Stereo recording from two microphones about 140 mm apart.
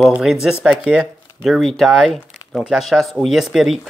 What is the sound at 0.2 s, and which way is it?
Speech, 5° right (ahead or behind).